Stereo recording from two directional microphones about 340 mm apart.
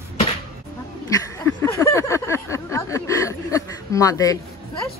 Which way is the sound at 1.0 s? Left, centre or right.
Centre.